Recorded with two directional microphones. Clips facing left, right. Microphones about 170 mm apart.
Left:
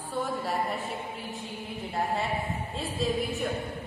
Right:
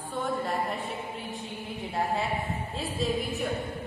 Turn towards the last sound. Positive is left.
turn(degrees=0)  # may be behind; listen again after turning